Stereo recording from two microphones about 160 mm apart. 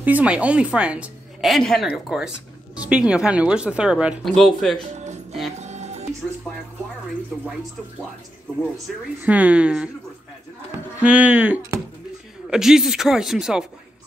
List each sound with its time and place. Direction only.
0.0 s a woman's voice: 10° right (ahead or behind)
4.9 s music: 45° right (ahead or behind)
8.9 s a man's voice: centre (ahead or behind)
11.0 s a woman's voice: 10° right (ahead or behind)